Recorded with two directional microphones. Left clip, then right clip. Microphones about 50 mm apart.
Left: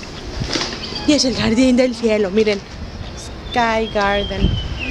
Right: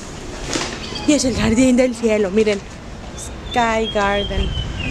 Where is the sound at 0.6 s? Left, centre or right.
Centre.